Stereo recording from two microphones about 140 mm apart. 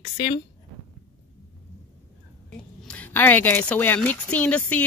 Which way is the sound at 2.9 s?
10° left (ahead or behind).